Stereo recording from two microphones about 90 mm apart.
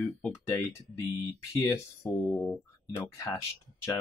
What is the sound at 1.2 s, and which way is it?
Speech, 30° left (ahead or behind).